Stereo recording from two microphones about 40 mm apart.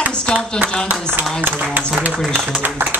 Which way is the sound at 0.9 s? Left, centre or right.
Right.